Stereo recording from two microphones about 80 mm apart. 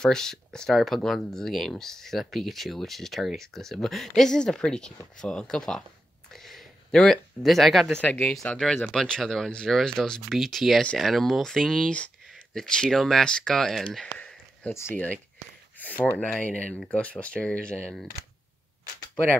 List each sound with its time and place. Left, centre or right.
0.0 s speech: centre
6.3 s a sound: centre
8.0 s speech: centre
8.8 s speech: centre
14.1 s a sound: centre
14.7 s speech: left
15.8 s speech: left